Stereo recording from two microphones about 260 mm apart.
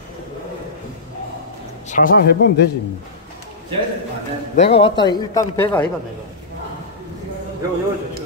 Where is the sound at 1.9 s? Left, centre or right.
Left.